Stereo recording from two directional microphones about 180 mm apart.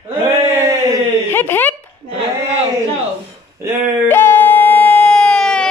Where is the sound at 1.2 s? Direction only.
10° left (ahead or behind).